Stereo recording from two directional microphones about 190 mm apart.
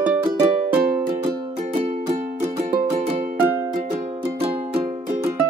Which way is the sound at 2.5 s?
40° right (ahead or behind).